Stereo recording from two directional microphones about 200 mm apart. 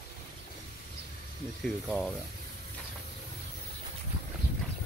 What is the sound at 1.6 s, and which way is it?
Speech, centre (ahead or behind).